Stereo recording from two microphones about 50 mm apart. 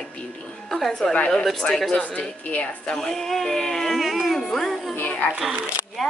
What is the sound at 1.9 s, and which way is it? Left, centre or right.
Speech, left.